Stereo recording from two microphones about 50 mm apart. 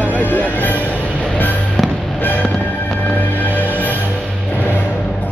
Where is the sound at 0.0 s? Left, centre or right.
Left.